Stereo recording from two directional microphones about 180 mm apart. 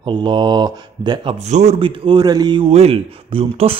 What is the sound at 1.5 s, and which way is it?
Speech, 35° right (ahead or behind).